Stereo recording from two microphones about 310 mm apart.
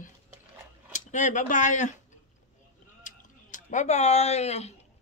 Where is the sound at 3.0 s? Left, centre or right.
Left.